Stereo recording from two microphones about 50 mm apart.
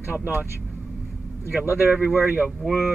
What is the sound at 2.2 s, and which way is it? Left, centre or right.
Speech, right.